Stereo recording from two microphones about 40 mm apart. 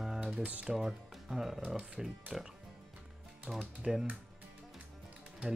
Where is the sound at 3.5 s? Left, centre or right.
Centre.